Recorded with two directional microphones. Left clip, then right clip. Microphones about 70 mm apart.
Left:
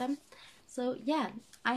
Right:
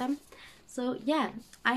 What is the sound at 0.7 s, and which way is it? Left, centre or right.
Speech, centre.